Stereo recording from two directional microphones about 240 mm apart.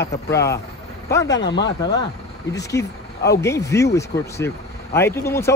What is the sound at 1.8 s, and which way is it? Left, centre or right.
Speech, centre.